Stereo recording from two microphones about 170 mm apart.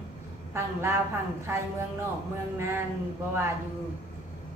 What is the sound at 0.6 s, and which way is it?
A woman's voice, 15° right (ahead or behind).